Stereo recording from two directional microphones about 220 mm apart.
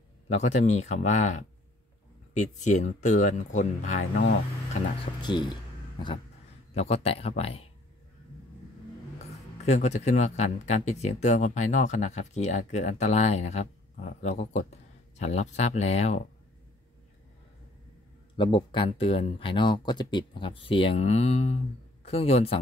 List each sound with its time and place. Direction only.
0.3 s speech: 30° left (ahead or behind)
5.2 s speech: 20° left (ahead or behind)
9.2 s speech: 30° left (ahead or behind)
18.3 s speech: 20° left (ahead or behind)